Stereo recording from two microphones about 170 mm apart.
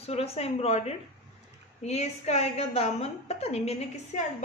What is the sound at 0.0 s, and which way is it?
A woman's voice, 35° left (ahead or behind).